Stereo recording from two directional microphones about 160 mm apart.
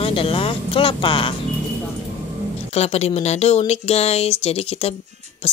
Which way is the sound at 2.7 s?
40° left (ahead or behind).